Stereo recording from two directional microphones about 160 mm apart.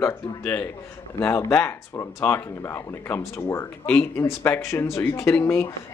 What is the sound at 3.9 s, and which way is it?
Speech, 5° left (ahead or behind).